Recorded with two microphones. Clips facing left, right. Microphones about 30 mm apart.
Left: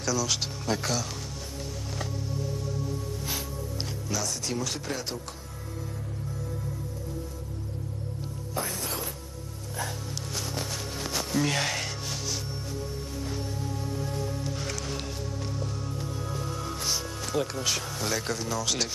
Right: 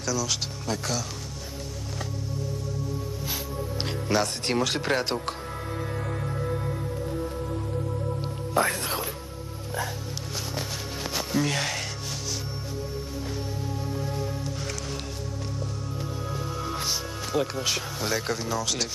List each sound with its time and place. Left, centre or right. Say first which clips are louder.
0.0 s speech: even; centre
4.1 s speech: right 7 dB; right
6.4 s music: right 8 dB; right
8.6 s speech: right 10 dB; right
11.4 s speech: even; centre
13.8 s music: right 2 dB; centre
16.0 s music: right 4 dB; centre
16.8 s speech: right 1 dB; centre